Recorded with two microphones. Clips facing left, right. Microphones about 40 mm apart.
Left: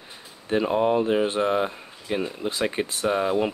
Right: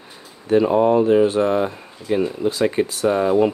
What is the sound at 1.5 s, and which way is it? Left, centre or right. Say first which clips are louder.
Speech: right 4 dB; centre.